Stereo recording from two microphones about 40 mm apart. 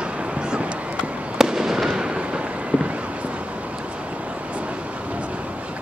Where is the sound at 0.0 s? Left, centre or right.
Right.